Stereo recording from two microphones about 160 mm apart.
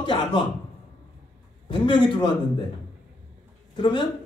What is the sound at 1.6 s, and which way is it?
Speech, 30° left (ahead or behind).